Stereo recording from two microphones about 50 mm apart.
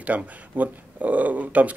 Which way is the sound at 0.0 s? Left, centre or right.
Right.